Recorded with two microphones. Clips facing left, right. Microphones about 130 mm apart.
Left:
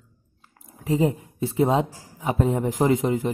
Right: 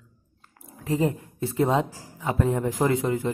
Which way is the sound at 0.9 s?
15° left (ahead or behind).